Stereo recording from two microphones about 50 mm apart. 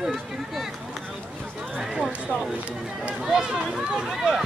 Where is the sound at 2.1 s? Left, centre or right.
Right.